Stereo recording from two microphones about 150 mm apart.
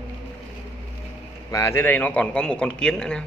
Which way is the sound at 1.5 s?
20° left (ahead or behind).